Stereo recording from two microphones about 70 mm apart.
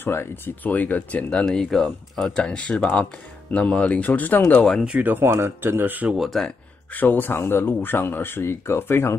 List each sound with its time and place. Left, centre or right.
0.0 s speech: left
0.7 s speech: left
1.4 s speech: centre
4.8 s speech: right
6.0 s speech: centre
6.9 s speech: left